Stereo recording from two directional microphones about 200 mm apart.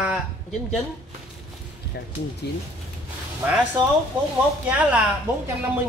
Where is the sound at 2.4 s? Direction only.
55° left (ahead or behind).